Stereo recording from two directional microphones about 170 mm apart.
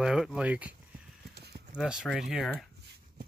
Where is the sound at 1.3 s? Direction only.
70° right (ahead or behind).